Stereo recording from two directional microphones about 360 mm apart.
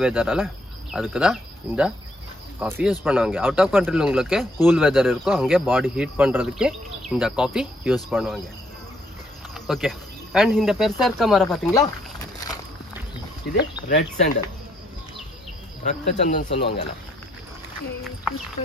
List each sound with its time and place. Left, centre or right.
0.0 s speech: centre
9.5 s speech: centre
11.4 s snake: centre
13.6 s speech: left
15.8 s speech: centre